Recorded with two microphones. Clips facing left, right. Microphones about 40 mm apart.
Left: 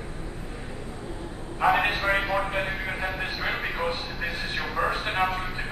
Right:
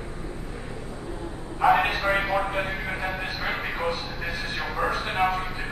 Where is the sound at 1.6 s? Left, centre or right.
Centre.